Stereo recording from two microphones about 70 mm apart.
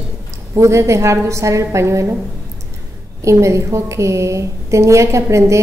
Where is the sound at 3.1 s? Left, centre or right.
Right.